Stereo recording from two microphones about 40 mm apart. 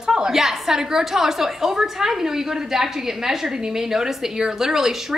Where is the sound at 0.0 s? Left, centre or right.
Centre.